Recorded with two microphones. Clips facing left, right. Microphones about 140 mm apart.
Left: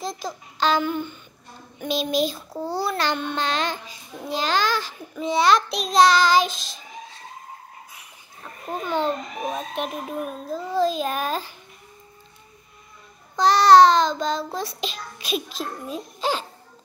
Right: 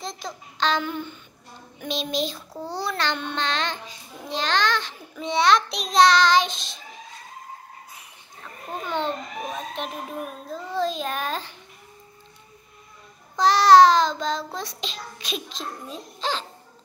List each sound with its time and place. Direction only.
0.0 s babbling: centre (ahead or behind)
1.8 s a child's voice: 5° left (ahead or behind)
8.8 s a child's voice: 5° left (ahead or behind)
9.4 s a child's voice: 15° left (ahead or behind)
10.5 s a child's voice: 5° left (ahead or behind)
13.4 s a child's voice: centre (ahead or behind)